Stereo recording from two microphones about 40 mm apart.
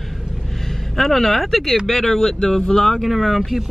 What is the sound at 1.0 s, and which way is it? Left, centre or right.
Speech, centre.